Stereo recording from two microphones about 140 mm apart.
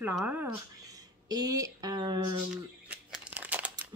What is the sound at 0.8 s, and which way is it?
Speech, 25° right (ahead or behind).